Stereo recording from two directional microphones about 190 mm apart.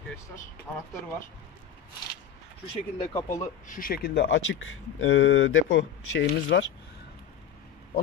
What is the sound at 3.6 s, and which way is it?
Speech, 45° left (ahead or behind).